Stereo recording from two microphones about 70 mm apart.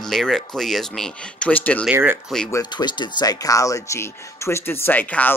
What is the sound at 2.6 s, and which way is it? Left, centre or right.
Speech, left.